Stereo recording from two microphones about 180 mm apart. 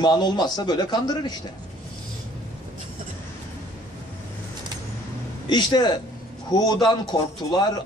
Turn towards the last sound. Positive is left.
turn(degrees=25)  # may be behind; listen again after turning